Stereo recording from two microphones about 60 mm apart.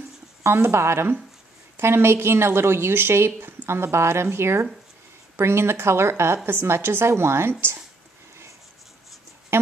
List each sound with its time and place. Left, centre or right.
0.4 s a woman's voice: right
3.3 s a sound: right
3.6 s a woman's voice: right
9.5 s speech: right